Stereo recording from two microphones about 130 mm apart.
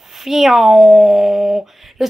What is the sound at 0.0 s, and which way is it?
Speech, centre (ahead or behind).